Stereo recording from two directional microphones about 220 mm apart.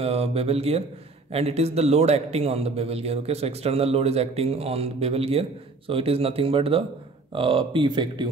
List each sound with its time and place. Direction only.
0.0 s a man's voice: 30° right (ahead or behind)